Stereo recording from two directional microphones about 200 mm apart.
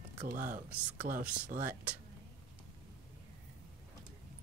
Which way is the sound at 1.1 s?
45° right (ahead or behind).